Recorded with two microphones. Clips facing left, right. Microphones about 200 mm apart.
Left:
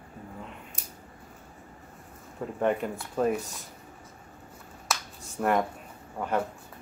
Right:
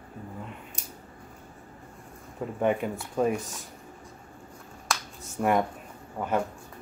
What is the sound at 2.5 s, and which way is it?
Speech, 5° right (ahead or behind).